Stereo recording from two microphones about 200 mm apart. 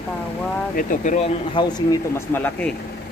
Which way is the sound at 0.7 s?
40° left (ahead or behind).